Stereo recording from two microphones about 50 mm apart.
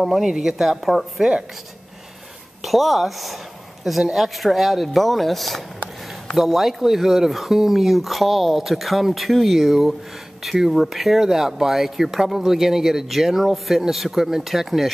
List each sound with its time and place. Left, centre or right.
0.0 s speech: centre
2.6 s speech: centre